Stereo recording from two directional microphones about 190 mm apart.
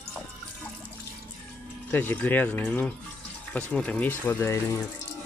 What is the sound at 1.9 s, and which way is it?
Speech, 10° left (ahead or behind).